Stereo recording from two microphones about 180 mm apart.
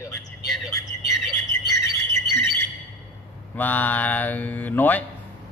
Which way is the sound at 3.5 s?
10° left (ahead or behind).